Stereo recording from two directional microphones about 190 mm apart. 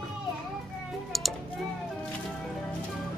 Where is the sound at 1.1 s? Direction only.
Centre (ahead or behind).